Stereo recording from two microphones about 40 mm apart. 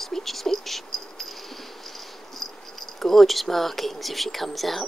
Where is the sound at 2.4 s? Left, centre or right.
Centre.